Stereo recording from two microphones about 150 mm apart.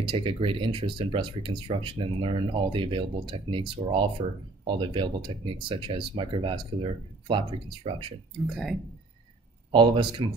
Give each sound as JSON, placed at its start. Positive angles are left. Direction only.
{"t": 0.0, "sound": "speech", "side_deg": -35}
{"t": 9.7, "sound": "speech", "side_deg": -30}